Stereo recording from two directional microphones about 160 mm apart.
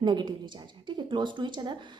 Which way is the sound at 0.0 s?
30° right (ahead or behind).